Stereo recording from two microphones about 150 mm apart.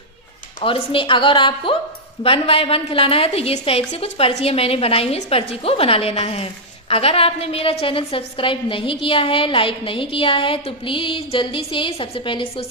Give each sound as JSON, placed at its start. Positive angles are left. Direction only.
{"t": 0.6, "sound": "a woman's voice", "side_deg": 35}